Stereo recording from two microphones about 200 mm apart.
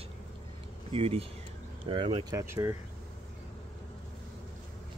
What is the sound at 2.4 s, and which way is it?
Speech, 10° right (ahead or behind).